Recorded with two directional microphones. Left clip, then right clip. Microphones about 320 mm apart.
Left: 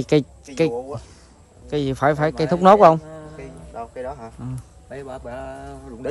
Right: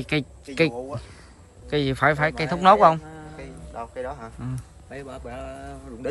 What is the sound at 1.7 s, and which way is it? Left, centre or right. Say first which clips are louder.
A man's voice: left 1 dB; centre.